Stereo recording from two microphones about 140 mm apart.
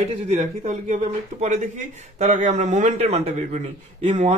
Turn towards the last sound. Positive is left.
turn(degrees=-55)  # may be behind; listen again after turning